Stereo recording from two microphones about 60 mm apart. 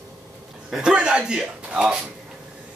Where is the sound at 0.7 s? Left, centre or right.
Centre.